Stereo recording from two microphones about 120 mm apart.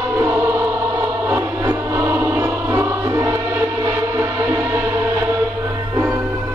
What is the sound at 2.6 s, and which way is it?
Music, 25° right (ahead or behind).